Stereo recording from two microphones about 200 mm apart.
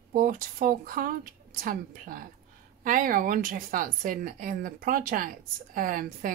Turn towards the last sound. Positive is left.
turn(degrees=-40)  # may be behind; listen again after turning